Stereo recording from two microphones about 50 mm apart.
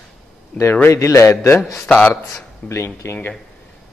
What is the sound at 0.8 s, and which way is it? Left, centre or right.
Speech, left.